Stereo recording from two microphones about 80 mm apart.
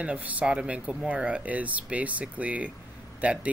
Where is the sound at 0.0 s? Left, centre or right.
Centre.